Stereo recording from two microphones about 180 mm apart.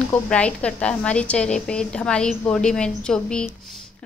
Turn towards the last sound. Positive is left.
turn(degrees=5)  # may be behind; listen again after turning